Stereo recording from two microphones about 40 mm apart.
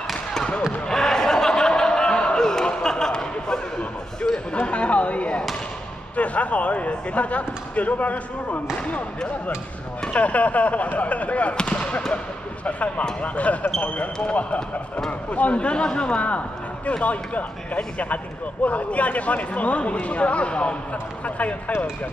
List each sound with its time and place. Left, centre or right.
0.1 s basketball bounce: centre
0.8 s a sound: centre
4.6 s chop: left
6.1 s speech: left
10.0 s speech: left
11.5 s speech: left